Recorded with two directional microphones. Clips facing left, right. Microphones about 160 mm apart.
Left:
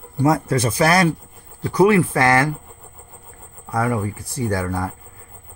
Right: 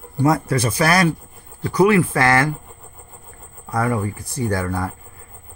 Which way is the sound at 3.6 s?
10° left (ahead or behind).